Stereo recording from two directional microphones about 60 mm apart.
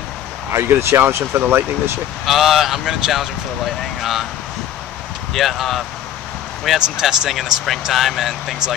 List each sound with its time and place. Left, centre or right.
0.5 s speech: right
2.2 s speech: centre
5.3 s speech: centre